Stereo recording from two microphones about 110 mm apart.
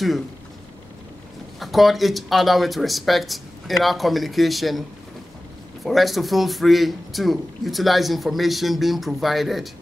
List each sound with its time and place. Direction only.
1.6 s a man's voice: centre (ahead or behind)
5.9 s a man's voice: centre (ahead or behind)